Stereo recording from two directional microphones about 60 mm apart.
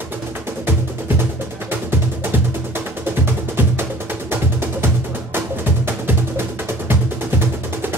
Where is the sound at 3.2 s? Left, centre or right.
Right.